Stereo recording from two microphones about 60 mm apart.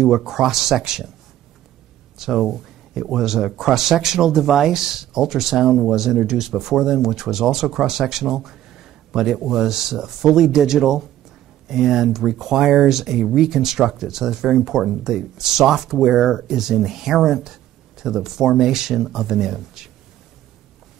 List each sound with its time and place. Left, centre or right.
0.0 s speech: centre
2.1 s speech: centre